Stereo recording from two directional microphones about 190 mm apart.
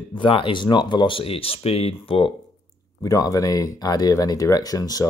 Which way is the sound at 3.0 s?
20° left (ahead or behind).